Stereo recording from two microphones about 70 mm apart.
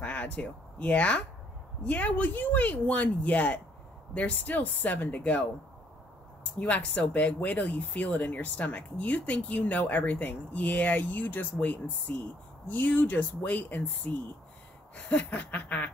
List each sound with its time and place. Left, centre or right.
0.0 s speech: centre
6.6 s speech: centre